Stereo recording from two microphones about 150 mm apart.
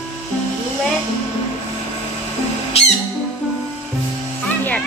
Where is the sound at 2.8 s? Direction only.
45° left (ahead or behind).